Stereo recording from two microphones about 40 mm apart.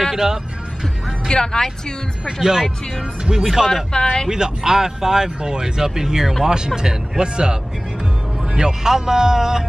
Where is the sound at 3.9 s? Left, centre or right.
Centre.